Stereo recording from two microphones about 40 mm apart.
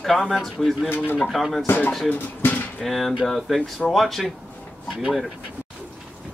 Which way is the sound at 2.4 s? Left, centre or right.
Left.